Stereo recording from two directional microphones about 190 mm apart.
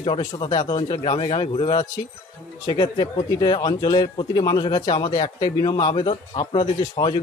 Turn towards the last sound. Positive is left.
turn(degrees=25)  # may be behind; listen again after turning